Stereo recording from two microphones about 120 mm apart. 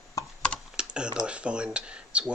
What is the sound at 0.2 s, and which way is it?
Typing, 30° left (ahead or behind).